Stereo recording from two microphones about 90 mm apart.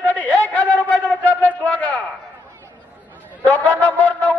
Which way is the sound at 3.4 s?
15° left (ahead or behind).